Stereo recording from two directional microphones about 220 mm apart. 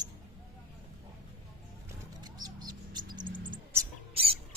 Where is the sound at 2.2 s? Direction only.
20° right (ahead or behind).